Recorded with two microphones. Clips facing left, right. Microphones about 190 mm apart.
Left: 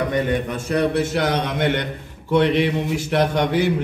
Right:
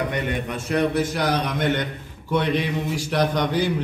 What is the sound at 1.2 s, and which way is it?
Speech, 25° left (ahead or behind).